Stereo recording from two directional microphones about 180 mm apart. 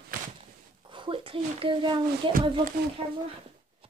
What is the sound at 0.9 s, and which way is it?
Speech, 30° right (ahead or behind).